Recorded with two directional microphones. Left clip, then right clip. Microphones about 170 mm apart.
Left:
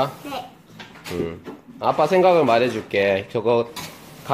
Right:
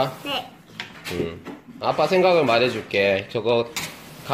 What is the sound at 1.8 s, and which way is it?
Speech, 15° left (ahead or behind).